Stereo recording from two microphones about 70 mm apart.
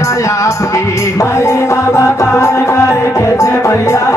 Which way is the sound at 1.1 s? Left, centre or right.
Left.